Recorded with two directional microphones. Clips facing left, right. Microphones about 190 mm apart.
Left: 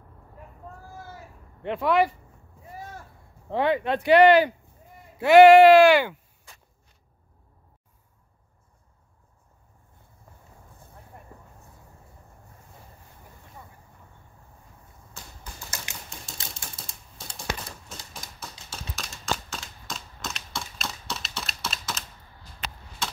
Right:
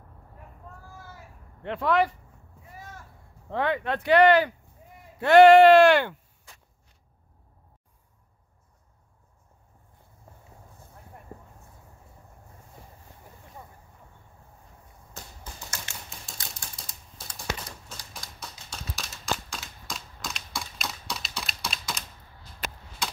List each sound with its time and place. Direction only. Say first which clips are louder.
1.6 s speech: left 2 dB; 10° left (ahead or behind)
3.5 s speech: left 3 dB; 15° left (ahead or behind)
15.2 s finger snapping: right 2 dB; 40° right (ahead or behind)
15.7 s typewriter: left 1 dB; 15° left (ahead or behind)
16.3 s typewriter: left 2 dB; centre (ahead or behind)
16.8 s a sound: left 2 dB; 25° left (ahead or behind)
18.4 s a sound: even; centre (ahead or behind)